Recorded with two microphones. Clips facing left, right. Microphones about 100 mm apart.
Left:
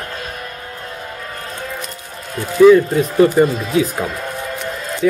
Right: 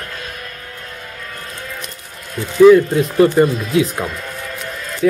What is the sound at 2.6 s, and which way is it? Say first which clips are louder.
Speech: right 1 dB; centre (ahead or behind).